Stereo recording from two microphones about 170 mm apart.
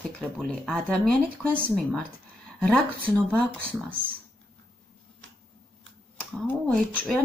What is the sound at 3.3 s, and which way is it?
Speech, 5° left (ahead or behind).